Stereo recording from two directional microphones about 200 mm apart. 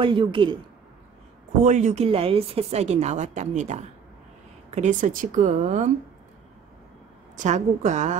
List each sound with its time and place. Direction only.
0.0 s a woman's voice: 25° right (ahead or behind)
1.6 s speech: 35° right (ahead or behind)
7.3 s speech: 35° right (ahead or behind)